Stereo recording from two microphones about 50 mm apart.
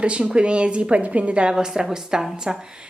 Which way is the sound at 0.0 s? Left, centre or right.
Right.